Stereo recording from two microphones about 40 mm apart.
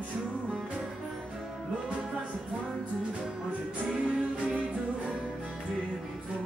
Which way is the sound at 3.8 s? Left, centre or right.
Right.